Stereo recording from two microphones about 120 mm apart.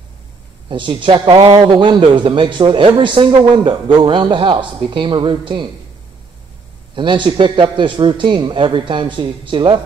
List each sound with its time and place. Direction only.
0.7 s a man's voice: 40° right (ahead or behind)
7.0 s a man's voice: 40° right (ahead or behind)